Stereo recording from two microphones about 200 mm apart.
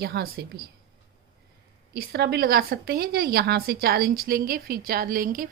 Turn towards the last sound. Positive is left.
turn(degrees=-45)  # may be behind; listen again after turning